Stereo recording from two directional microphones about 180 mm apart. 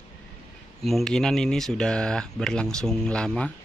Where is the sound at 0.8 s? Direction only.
Centre (ahead or behind).